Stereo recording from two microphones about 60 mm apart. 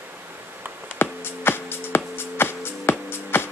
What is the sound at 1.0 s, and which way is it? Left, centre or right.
Music, left.